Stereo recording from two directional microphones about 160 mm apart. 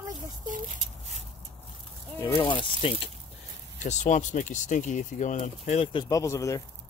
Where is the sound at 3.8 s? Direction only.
50° left (ahead or behind); by 6.6 s 20° left (ahead or behind).